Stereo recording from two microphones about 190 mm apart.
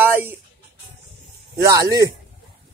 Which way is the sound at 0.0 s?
10° right (ahead or behind).